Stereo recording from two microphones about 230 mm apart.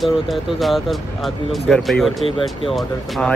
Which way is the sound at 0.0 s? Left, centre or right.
Centre.